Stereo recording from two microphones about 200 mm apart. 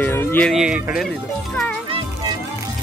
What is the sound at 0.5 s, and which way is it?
Speech, 5° right (ahead or behind).